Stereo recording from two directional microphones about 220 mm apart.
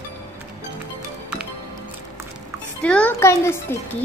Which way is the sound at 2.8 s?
5° left (ahead or behind).